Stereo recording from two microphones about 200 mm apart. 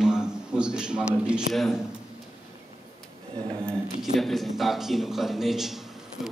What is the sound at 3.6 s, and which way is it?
A man's voice, centre (ahead or behind).